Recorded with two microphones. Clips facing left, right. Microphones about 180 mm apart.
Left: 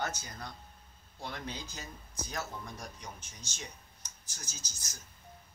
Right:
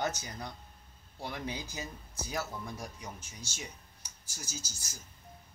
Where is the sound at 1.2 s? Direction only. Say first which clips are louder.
Right 3 dB; 10° right (ahead or behind).